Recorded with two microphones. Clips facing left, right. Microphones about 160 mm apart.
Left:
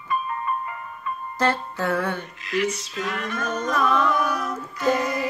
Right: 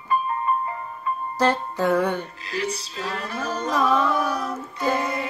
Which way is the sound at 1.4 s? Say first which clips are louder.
Right 2 dB; 10° right (ahead or behind).